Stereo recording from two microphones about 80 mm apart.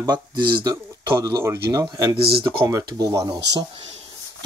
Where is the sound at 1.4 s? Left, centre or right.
Right.